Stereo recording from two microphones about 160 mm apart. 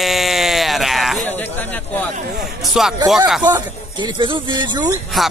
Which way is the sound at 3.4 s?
25° right (ahead or behind).